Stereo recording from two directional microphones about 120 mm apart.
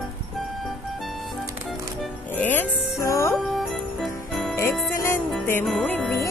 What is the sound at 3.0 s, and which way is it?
Music, 25° left (ahead or behind).